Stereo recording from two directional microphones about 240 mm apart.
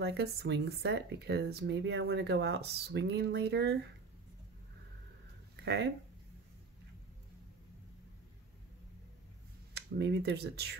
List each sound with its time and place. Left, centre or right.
0.0 s speech: right
9.8 s speech: right